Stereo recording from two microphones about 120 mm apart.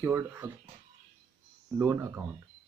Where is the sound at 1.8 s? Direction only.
25° right (ahead or behind).